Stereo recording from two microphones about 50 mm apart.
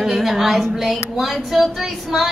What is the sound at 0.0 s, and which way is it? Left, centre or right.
Speech, centre.